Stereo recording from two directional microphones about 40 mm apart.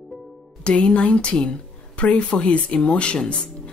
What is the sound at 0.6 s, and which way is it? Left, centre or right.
Speech, left.